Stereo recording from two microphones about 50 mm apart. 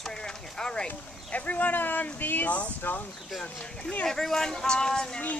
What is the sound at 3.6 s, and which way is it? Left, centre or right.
Speech, centre.